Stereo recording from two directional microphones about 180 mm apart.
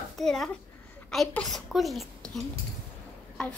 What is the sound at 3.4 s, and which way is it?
Speech, 5° left (ahead or behind).